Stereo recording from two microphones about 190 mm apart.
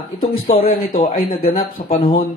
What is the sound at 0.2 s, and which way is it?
A man's voice, 50° left (ahead or behind).